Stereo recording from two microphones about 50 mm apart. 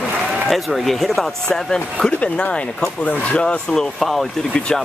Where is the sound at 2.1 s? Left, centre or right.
Left.